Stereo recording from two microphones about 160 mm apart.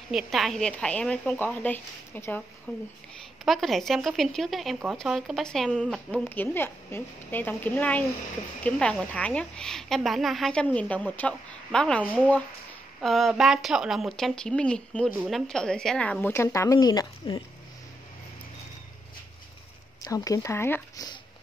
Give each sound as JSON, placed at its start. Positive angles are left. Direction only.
{"t": 0.1, "sound": "a woman's voice", "side_deg": 0}
{"t": 3.4, "sound": "a woman's voice", "side_deg": 0}
{"t": 20.0, "sound": "speech", "side_deg": 20}